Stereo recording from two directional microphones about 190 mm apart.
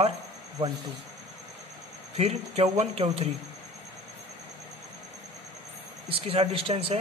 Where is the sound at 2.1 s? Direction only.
30° right (ahead or behind).